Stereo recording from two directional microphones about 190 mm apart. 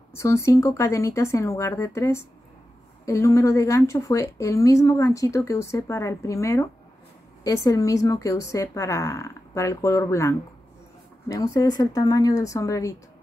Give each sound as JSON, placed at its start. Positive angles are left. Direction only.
{"t": 0.1, "sound": "a woman's voice", "side_deg": 15}